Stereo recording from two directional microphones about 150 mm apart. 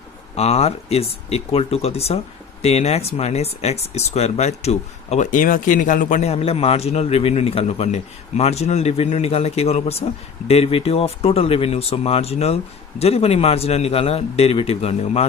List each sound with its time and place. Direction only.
0.4 s speech: 45° left (ahead or behind)